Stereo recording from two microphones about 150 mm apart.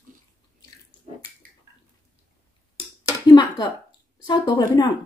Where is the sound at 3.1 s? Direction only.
25° left (ahead or behind).